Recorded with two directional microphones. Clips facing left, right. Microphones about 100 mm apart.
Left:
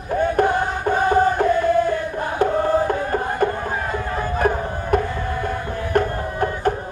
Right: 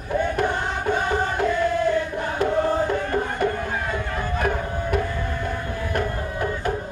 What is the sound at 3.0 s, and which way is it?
Music, 35° left (ahead or behind).